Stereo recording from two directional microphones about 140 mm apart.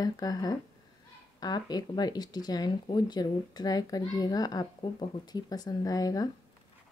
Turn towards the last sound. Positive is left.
turn(degrees=25)  # may be behind; listen again after turning